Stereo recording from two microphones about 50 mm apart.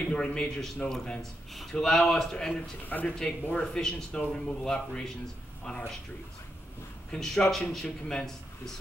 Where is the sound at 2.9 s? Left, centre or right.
Left.